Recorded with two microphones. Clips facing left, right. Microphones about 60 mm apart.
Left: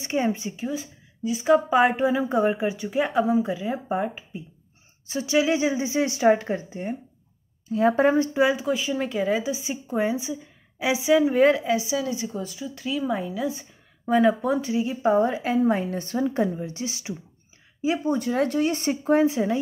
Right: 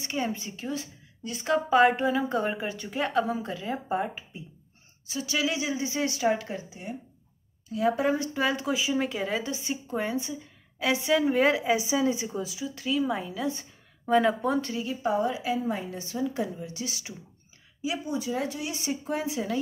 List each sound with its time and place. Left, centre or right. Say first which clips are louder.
0.0 s speech: left 6 dB; left
0.6 s a woman's voice: left 4 dB; centre
5.0 s a woman's voice: left 7 dB; left
8.5 s a woman's voice: left 2 dB; centre
11.7 s a woman's voice: even; right
12.3 s a woman's voice: left 1 dB; centre
14.7 s a woman's voice: left 6 dB; left
17.8 s speech: left 7 dB; left